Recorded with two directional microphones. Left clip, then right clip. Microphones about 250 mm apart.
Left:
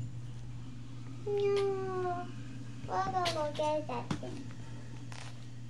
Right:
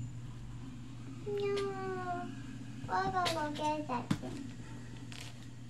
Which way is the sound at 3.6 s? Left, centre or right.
Centre.